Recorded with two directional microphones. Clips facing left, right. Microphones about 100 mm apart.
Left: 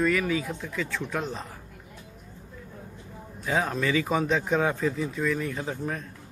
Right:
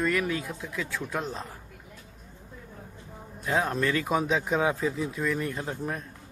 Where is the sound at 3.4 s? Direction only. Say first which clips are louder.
Even; centre (ahead or behind).